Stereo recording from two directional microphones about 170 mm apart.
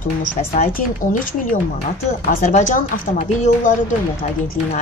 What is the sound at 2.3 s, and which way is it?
Speech, 45° left (ahead or behind).